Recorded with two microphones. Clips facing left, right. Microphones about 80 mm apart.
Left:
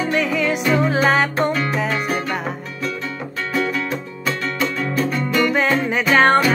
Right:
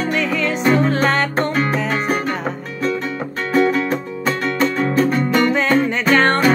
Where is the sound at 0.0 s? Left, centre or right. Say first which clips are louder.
Even; centre.